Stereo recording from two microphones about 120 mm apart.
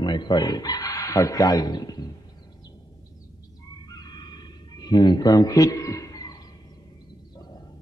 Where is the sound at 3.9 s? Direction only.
35° left (ahead or behind).